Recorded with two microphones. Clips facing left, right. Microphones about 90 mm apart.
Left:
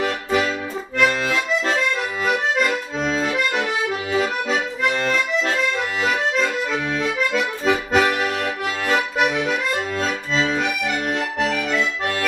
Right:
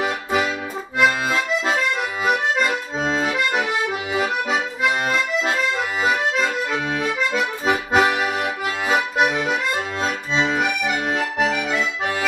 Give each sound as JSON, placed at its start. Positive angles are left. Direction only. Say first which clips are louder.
{"t": 0.0, "sound": "accordion", "louder": "left 1 dB", "side_deg": -10}
{"t": 0.9, "sound": "music", "louder": "right 1 dB", "side_deg": -5}
{"t": 2.2, "sound": "accordion", "louder": "even", "side_deg": -5}
{"t": 7.6, "sound": "accordion", "louder": "even", "side_deg": -15}
{"t": 9.9, "sound": "accordion", "louder": "even", "side_deg": -20}
{"t": 10.6, "sound": "accordion", "louder": "right 1 dB", "side_deg": -10}